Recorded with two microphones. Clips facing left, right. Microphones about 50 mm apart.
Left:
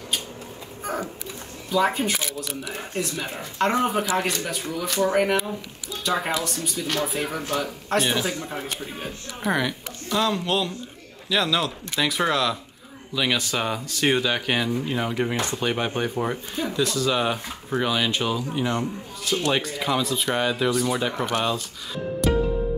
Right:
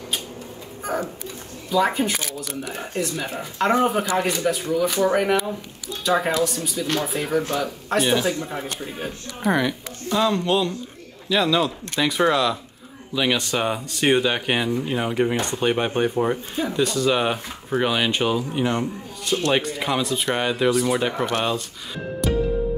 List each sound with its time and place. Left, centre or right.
1.9 s a man's voice: centre
15.3 s speech: centre
19.3 s a man's voice: centre
22.2 s music: centre